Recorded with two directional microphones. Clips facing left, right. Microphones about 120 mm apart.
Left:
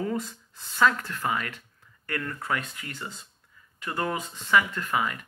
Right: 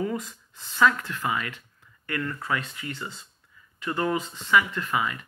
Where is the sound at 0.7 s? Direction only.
40° left (ahead or behind).